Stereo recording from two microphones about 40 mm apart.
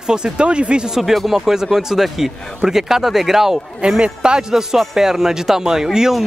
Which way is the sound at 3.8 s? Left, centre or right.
Right.